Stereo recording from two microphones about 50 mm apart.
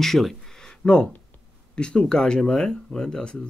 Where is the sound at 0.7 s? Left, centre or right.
Left.